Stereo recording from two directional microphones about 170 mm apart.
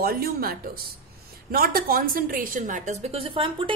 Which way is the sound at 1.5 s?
60° right (ahead or behind).